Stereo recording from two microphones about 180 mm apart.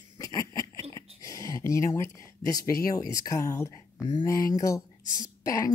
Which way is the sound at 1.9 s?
20° left (ahead or behind).